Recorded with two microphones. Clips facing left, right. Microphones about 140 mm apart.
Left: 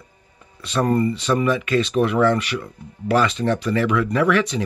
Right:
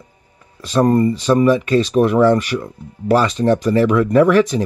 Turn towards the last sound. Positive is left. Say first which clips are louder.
# right 7 dB
turn(degrees=-45)  # may be behind; listen again after turning